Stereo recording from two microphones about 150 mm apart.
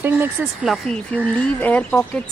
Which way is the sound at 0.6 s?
Centre (ahead or behind).